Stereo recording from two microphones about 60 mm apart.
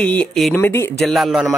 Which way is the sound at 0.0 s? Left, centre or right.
Left.